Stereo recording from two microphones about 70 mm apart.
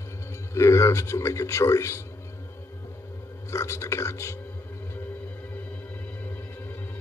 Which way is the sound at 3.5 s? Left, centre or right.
Left.